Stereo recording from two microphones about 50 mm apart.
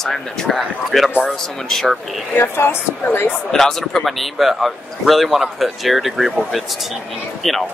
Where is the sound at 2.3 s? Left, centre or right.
Left.